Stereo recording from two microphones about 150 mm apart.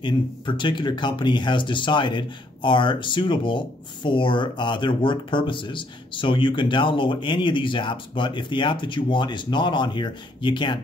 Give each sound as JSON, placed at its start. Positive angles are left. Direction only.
{"t": 0.0, "sound": "speech", "side_deg": 30}